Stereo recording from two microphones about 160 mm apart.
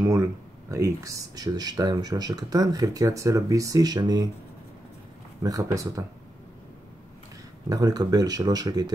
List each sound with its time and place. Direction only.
0.0 s speech: 20° right (ahead or behind)
5.4 s speech: 20° right (ahead or behind)
7.7 s speech: 25° right (ahead or behind)